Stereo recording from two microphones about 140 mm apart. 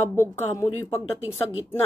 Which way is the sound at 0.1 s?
15° left (ahead or behind).